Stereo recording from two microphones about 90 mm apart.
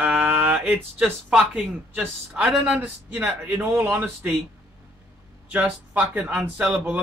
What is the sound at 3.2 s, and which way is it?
Speech, 30° right (ahead or behind).